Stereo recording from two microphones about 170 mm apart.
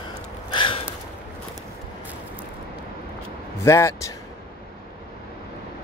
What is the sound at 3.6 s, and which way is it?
Speech, 15° left (ahead or behind).